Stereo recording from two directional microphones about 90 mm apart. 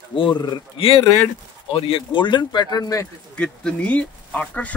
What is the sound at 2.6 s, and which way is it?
Speech, 40° left (ahead or behind).